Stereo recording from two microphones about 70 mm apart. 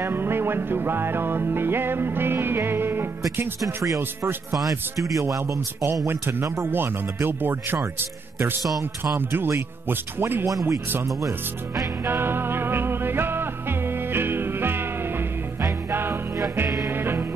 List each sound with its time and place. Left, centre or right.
0.0 s music: right
3.6 s a man's voice: right
6.0 s speech: right
10.4 s a man's voice: right
12.0 s music: right